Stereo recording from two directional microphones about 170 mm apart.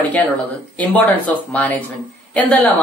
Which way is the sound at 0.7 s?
10° left (ahead or behind).